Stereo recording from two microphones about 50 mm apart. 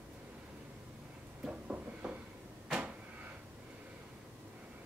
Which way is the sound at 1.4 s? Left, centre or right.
Centre.